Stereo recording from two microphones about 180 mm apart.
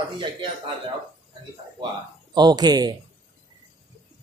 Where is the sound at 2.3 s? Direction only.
20° right (ahead or behind).